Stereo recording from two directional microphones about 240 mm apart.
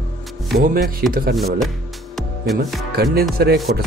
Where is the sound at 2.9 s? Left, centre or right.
Right.